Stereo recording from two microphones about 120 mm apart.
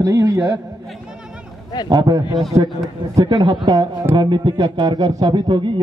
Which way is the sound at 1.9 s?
35° right (ahead or behind).